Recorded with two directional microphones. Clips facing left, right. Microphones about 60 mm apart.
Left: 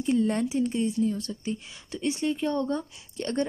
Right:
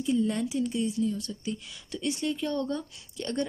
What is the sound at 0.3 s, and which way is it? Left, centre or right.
Speech, left.